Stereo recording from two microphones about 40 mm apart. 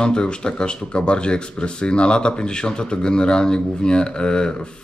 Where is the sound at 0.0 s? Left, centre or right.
Left.